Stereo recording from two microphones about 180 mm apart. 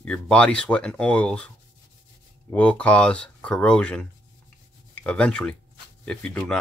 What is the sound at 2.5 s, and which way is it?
Speech, 10° left (ahead or behind).